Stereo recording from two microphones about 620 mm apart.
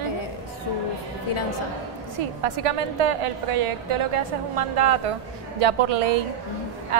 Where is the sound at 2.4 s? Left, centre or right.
Right.